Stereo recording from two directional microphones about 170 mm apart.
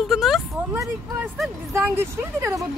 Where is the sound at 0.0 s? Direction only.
Centre (ahead or behind).